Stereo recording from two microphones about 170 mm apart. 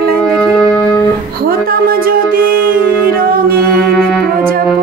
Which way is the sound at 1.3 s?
60° right (ahead or behind).